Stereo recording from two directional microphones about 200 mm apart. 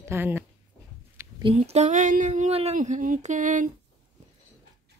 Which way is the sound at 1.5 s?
30° right (ahead or behind).